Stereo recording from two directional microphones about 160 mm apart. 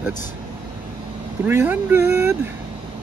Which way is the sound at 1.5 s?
15° right (ahead or behind).